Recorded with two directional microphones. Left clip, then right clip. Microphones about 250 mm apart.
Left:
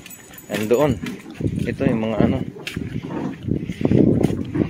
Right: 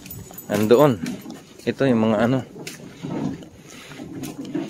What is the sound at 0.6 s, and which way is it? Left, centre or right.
Speech, right.